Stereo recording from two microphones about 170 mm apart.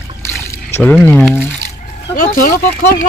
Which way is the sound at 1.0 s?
10° left (ahead or behind).